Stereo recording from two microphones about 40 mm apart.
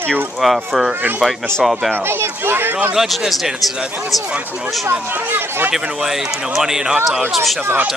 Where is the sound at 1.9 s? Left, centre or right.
Right.